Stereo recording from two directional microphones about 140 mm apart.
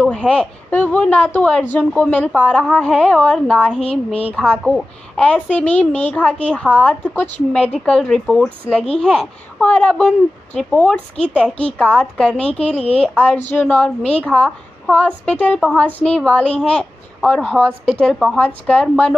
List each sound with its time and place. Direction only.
0.1 s a woman's voice: 5° left (ahead or behind)
3.8 s speech: 45° left (ahead or behind)
4.4 s a woman's voice: 5° left (ahead or behind)
12.7 s speech: 45° left (ahead or behind)
13.0 s a woman's voice: 10° left (ahead or behind)